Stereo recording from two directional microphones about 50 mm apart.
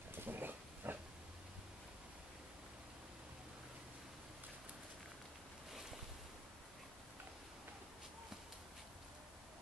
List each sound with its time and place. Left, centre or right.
0.1 s pig: right
5.7 s boat: centre